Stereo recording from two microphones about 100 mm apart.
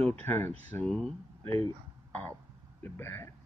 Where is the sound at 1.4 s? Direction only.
70° right (ahead or behind).